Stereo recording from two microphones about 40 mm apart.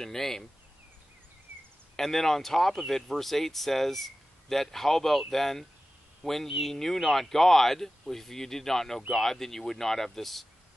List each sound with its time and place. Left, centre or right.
0.0 s speech: centre
1.5 s a sound: right
2.0 s speech: centre